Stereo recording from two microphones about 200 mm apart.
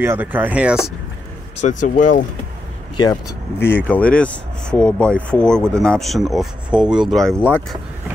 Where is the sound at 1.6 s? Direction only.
40° left (ahead or behind).